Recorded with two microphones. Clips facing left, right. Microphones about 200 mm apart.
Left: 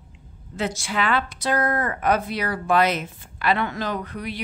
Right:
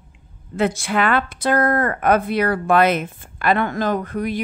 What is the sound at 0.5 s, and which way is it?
A woman's voice, 55° right (ahead or behind).